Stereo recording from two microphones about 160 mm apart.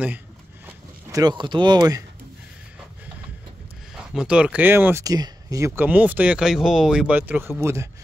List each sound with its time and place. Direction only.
1.1 s speech: 25° right (ahead or behind)
3.9 s speech: 5° right (ahead or behind)